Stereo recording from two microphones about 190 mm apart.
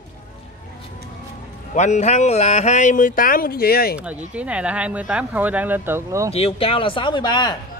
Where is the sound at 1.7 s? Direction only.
40° left (ahead or behind); by 3.9 s 55° left (ahead or behind).